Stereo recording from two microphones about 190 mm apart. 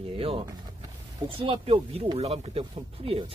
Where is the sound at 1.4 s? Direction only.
30° right (ahead or behind).